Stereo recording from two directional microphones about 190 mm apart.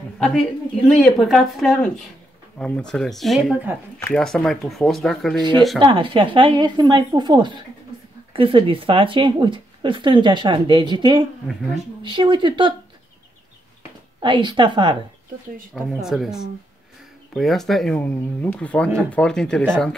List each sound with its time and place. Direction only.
0.2 s speech: 5° left (ahead or behind)
5.8 s speech: 25° right (ahead or behind)
14.2 s speech: 25° right (ahead or behind)
15.7 s speech: centre (ahead or behind)